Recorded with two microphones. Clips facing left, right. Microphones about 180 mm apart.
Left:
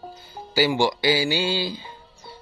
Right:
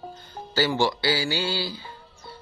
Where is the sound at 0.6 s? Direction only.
15° left (ahead or behind).